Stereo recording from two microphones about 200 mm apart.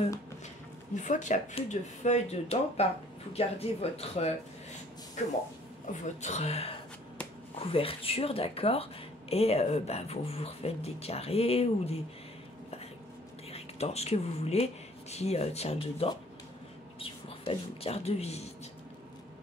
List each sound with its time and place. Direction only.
0.9 s speech: 40° left (ahead or behind)
13.5 s speech: 30° left (ahead or behind)